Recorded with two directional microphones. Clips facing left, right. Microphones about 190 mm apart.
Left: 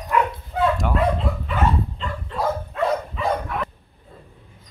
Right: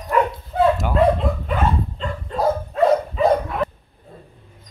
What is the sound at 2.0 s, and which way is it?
Dog, 40° right (ahead or behind).